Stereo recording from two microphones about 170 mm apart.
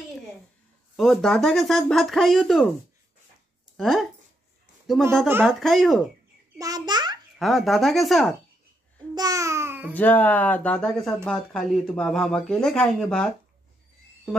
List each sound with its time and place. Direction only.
0.9 s speech: centre (ahead or behind)
3.7 s speech: centre (ahead or behind)
6.6 s a child's voice: 25° right (ahead or behind)
7.3 s speech: centre (ahead or behind)
9.1 s babbling: 20° right (ahead or behind)
9.9 s speech: 10° left (ahead or behind)